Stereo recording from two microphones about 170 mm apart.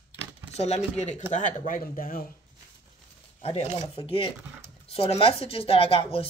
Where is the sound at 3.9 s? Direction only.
30° left (ahead or behind).